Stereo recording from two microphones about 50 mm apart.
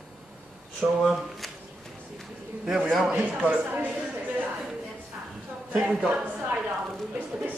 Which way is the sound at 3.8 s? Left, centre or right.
Right.